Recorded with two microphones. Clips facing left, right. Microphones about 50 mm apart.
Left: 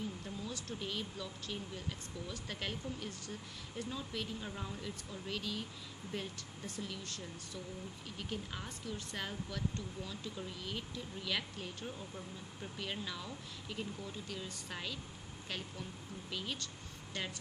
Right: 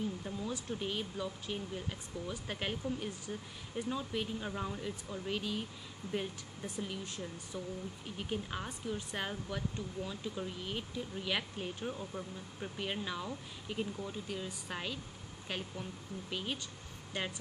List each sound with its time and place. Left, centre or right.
0.2 s speech: centre
16.3 s speech: centre